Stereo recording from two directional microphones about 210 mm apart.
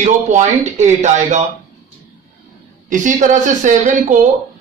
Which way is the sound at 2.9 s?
35° right (ahead or behind).